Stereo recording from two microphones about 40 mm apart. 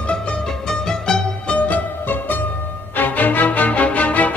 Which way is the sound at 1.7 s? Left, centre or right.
Left.